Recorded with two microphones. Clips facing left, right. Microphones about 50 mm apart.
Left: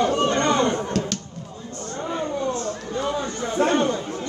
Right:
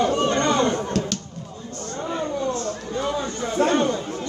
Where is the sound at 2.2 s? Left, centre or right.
Left.